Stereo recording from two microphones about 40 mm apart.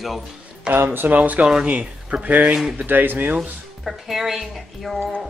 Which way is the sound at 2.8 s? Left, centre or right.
Right.